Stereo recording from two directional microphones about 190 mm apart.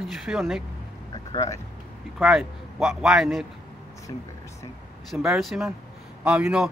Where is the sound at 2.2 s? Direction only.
Centre (ahead or behind).